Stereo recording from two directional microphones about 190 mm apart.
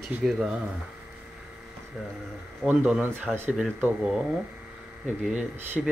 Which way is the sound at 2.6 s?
5° right (ahead or behind).